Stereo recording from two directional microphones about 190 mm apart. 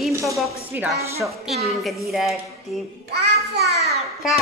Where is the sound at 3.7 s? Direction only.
35° right (ahead or behind).